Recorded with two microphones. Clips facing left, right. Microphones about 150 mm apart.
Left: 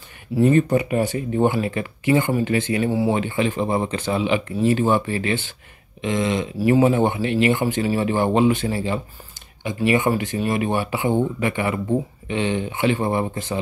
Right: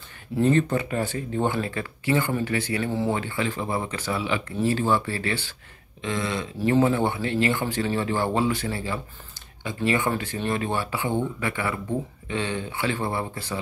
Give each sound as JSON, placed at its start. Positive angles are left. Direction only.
{"t": 0.4, "sound": "speech", "side_deg": 15}